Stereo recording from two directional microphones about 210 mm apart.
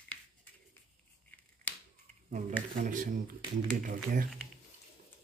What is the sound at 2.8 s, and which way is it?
Speech, 40° right (ahead or behind).